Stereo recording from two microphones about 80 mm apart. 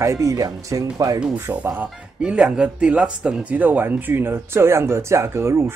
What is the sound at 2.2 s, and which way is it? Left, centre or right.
Speech, centre.